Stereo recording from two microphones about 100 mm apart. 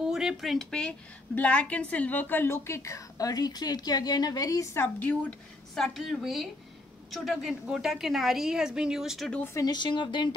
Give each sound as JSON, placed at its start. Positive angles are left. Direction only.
{"t": 0.0, "sound": "a woman's voice", "side_deg": -5}
{"t": 4.8, "sound": "speech", "side_deg": 15}
{"t": 5.8, "sound": "a woman's voice", "side_deg": 0}
{"t": 9.7, "sound": "speech", "side_deg": 50}